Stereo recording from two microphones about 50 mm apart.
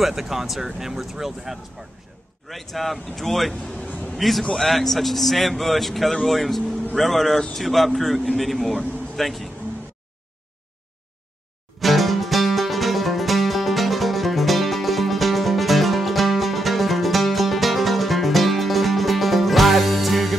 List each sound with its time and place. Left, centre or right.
0.0 s speech: centre
3.8 s a sound: left
4.1 s a man's voice: centre
11.8 s music: centre